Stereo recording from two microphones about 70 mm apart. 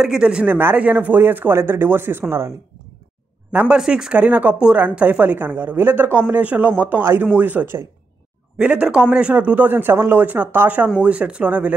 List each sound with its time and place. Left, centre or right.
0.0 s speech: centre
0.5 s speech: right
3.6 s speech: centre; by 7.8 s right
8.5 s speech: centre
11.0 s speech: centre